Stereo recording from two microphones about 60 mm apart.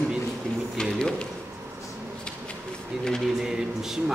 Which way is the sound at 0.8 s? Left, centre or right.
Centre.